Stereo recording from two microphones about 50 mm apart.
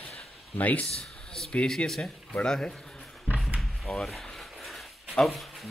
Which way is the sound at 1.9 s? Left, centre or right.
Centre.